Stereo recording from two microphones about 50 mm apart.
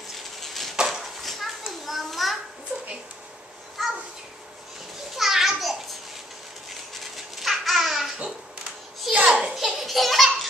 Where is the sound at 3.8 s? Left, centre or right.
Centre.